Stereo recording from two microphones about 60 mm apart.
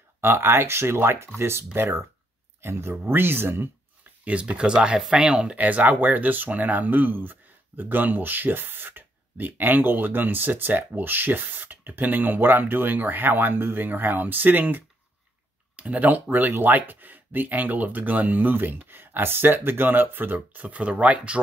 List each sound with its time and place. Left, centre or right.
0.2 s speech: right
4.2 s speech: right